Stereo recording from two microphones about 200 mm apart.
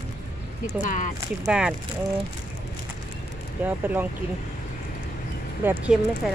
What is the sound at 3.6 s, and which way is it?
Speech, 10° right (ahead or behind).